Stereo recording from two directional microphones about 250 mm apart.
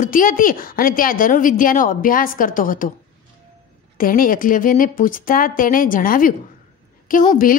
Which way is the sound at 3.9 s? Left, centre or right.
Left.